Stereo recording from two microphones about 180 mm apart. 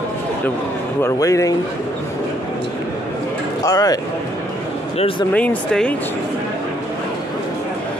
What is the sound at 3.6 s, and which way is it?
Speech, 20° left (ahead or behind).